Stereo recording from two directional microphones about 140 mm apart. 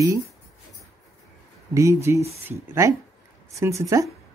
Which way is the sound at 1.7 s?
20° right (ahead or behind).